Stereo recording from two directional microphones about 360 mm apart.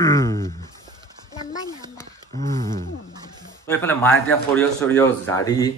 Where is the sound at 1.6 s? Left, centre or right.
Centre.